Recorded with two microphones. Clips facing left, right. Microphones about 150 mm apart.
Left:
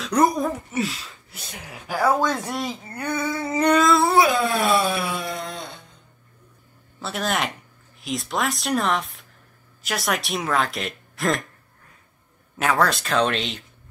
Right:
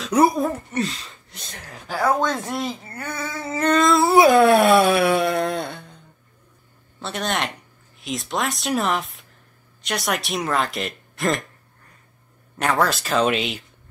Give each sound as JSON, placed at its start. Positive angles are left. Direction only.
{"t": 0.0, "sound": "a child's voice", "side_deg": -5}
{"t": 3.8, "sound": "speech", "side_deg": 0}
{"t": 4.3, "sound": "speech", "side_deg": -65}
{"t": 7.0, "sound": "speech", "side_deg": 5}
{"t": 12.5, "sound": "speech", "side_deg": 0}